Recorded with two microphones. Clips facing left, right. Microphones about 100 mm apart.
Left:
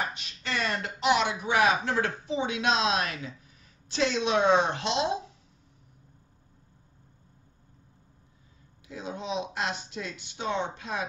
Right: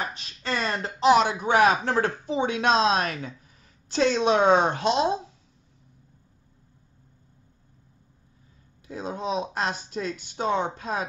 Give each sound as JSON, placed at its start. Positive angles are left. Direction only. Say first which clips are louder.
{"t": 0.1, "sound": "speech", "louder": "right 4 dB", "side_deg": -40}
{"t": 8.8, "sound": "speech", "louder": "right 5 dB", "side_deg": -40}